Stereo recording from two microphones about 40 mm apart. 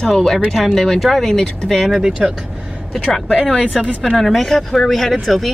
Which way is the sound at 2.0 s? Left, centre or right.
Centre.